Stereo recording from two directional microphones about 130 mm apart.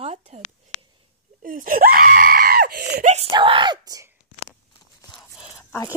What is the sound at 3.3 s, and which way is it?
Speech, 35° right (ahead or behind).